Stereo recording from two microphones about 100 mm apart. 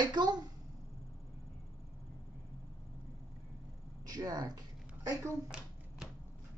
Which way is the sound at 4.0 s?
40° right (ahead or behind).